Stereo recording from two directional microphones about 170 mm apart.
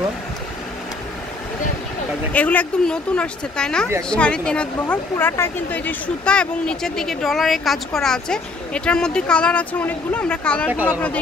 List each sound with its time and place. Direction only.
2.3 s speech: 10° left (ahead or behind)